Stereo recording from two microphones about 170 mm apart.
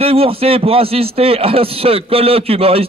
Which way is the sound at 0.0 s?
35° right (ahead or behind).